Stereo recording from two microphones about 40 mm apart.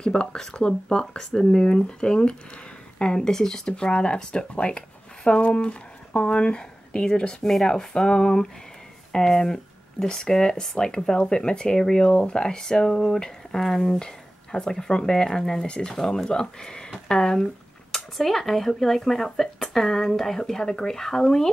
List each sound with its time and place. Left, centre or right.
0.0 s speech: left
7.4 s speech: centre
7.7 s speech: centre